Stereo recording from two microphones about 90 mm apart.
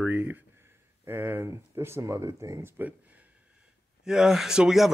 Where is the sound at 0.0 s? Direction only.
20° right (ahead or behind); by 2.7 s 35° right (ahead or behind).